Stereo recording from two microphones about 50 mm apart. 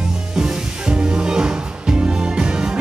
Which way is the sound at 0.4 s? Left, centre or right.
Centre.